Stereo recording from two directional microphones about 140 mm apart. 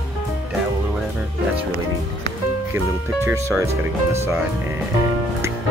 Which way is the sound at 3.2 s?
20° right (ahead or behind).